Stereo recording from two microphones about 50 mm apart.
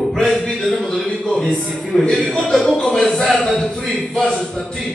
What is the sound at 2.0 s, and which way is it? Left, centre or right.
A man's voice, centre.